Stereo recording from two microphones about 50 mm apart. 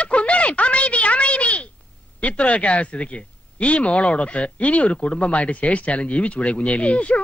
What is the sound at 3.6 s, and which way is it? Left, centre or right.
Speech, left.